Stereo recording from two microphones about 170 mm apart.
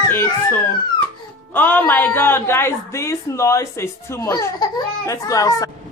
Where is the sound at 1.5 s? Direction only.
10° left (ahead or behind).